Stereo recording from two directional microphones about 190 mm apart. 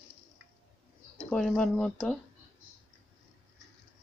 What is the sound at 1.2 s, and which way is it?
Speech, 5° left (ahead or behind).